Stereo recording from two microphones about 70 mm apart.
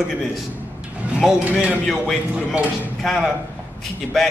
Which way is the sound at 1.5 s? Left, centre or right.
Centre.